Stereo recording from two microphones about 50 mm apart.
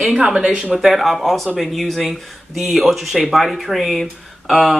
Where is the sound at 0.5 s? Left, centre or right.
Right.